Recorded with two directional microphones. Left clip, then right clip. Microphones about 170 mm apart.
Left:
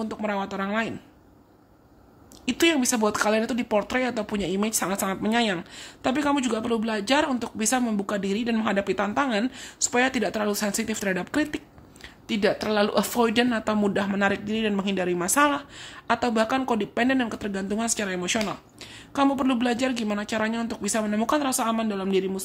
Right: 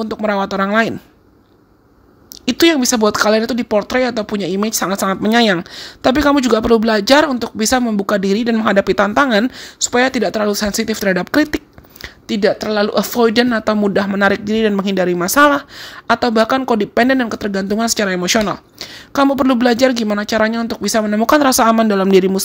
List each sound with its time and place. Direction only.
0.0 s speech: 25° right (ahead or behind)
2.4 s speech: 25° right (ahead or behind)
12.3 s speech: 25° right (ahead or behind)
21.4 s speech: 40° right (ahead or behind)